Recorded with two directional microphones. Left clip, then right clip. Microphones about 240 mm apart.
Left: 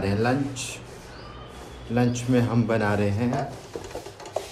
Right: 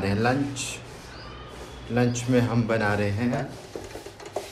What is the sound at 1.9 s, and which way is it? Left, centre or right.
A man's voice, centre.